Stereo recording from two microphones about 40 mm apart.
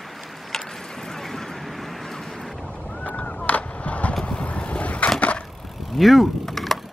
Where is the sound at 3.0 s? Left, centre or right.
Left.